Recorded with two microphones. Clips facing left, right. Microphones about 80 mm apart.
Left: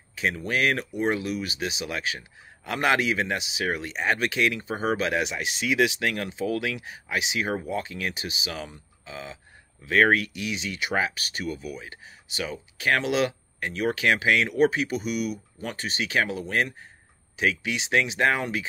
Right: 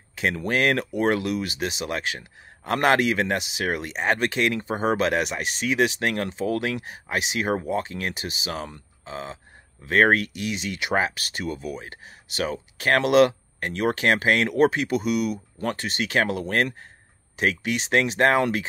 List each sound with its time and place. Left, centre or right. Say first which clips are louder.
0.1 s speech: right 2 dB; right
0.5 s speech: right 3 dB; right
0.7 s speech: right 4 dB; right
16.3 s speech: right 3 dB; right